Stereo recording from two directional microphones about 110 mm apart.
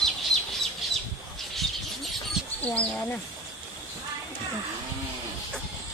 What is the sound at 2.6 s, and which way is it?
Speech, 10° left (ahead or behind).